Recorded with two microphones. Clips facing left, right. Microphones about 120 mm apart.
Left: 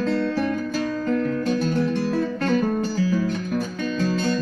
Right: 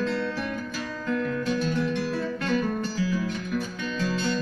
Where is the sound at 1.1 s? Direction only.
40° left (ahead or behind).